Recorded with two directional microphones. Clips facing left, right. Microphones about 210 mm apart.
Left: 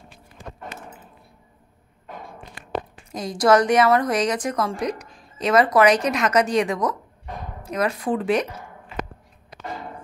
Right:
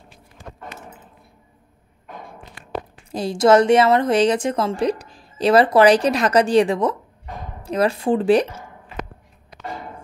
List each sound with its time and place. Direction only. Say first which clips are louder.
3.1 s a woman's voice: right 3 dB; 30° right (ahead or behind)